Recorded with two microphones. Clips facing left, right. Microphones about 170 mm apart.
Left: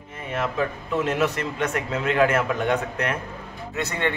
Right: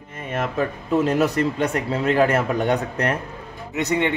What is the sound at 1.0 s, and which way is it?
A man's voice, 40° right (ahead or behind).